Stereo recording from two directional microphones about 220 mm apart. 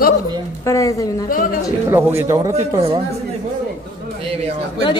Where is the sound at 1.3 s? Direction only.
40° left (ahead or behind).